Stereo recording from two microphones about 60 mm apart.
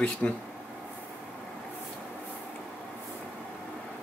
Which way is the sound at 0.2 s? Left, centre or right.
Centre.